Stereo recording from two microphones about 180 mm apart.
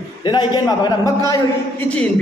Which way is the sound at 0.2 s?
25° left (ahead or behind).